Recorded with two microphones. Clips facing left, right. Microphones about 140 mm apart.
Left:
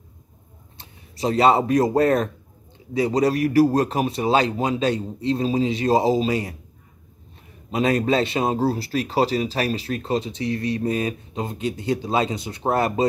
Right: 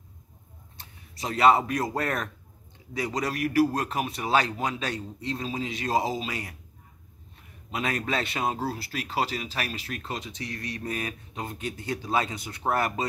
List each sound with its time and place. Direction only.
0.7 s speech: 30° left (ahead or behind)
7.7 s speech: 30° left (ahead or behind)